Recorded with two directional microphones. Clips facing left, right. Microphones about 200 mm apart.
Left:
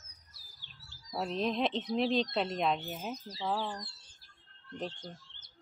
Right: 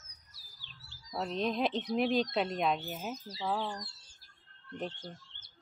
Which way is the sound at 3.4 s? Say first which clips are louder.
Even; centre (ahead or behind).